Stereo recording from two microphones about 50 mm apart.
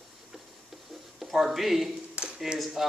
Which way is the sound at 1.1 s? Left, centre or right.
Centre.